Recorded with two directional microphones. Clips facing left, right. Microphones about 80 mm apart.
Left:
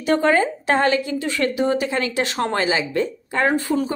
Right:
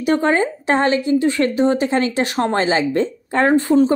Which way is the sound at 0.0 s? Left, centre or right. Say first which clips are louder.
Right 1 dB; right.